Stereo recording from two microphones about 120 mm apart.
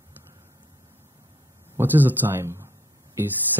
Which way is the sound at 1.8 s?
15° right (ahead or behind).